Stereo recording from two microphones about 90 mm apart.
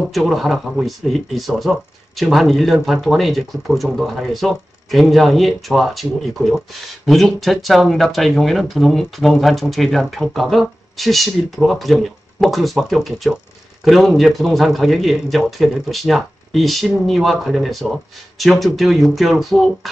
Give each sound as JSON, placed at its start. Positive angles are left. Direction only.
{"t": 0.1, "sound": "speech", "side_deg": 0}